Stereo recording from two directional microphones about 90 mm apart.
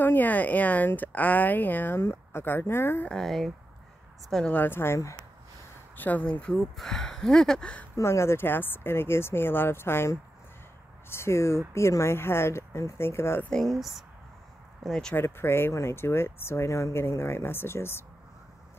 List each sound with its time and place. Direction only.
0.0 s speech: 20° left (ahead or behind)
3.1 s speech: 5° left (ahead or behind)
4.6 s speech: 25° left (ahead or behind)
5.9 s speech: 20° left (ahead or behind)
7.9 s speech: 30° left (ahead or behind)
13.4 s speech: 5° left (ahead or behind)
15.1 s speech: 25° left (ahead or behind)